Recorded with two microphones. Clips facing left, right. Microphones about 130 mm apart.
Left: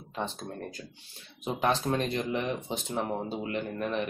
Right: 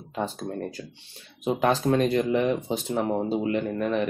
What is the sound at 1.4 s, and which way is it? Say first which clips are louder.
Speech: right 5 dB; 35° right (ahead or behind).